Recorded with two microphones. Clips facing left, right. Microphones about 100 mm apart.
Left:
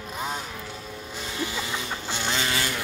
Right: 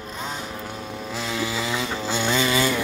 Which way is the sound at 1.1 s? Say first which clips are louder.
Right 4 dB; 90° right.